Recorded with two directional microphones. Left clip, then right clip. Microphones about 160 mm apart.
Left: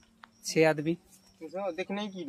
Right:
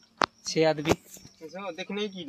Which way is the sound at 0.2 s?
5° right (ahead or behind).